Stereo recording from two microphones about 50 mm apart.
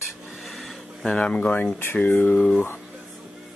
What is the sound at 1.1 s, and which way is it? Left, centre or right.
Speech, centre.